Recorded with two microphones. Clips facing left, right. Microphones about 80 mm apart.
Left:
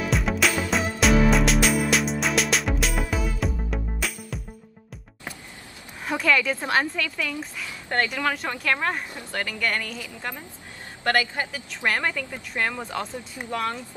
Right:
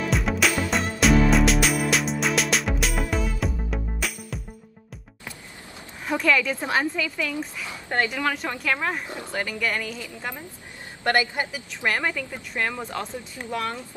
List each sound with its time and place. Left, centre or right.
0.0 s music: centre
6.0 s a woman's voice: centre
8.3 s a woman's voice: centre
11.7 s speech: centre